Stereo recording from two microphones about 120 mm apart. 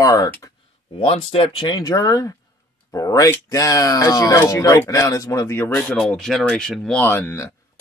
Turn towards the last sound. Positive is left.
turn(degrees=20)  # may be behind; listen again after turning